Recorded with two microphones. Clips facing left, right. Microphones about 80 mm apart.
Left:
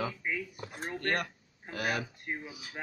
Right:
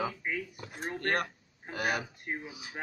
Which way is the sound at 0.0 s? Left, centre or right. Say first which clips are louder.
Right 1 dB; centre.